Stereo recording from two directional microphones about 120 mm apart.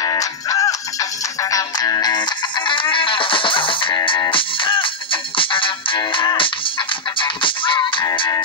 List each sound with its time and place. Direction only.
0.0 s music: 30° left (ahead or behind)